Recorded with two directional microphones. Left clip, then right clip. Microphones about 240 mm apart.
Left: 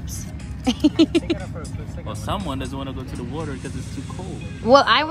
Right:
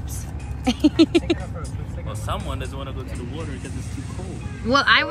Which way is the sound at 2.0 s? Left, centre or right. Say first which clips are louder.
Left 3 dB; left.